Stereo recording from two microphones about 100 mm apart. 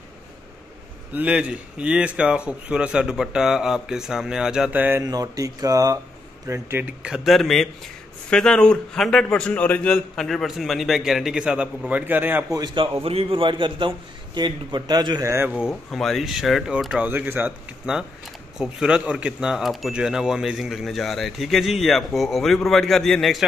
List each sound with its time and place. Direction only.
1.1 s speech: 10° right (ahead or behind)
5.0 s speech: 40° right (ahead or behind)
6.8 s a man's voice: 10° right (ahead or behind); by 10.0 s 15° left (ahead or behind)
10.1 s speech: 5° left (ahead or behind); by 12.4 s 20° right (ahead or behind)
12.4 s speech: 40° right (ahead or behind)
13.0 s a man's voice: 70° right (ahead or behind); by 15.2 s 45° right (ahead or behind)
15.2 s speech: 25° right (ahead or behind)
15.7 s speech: 5° left (ahead or behind)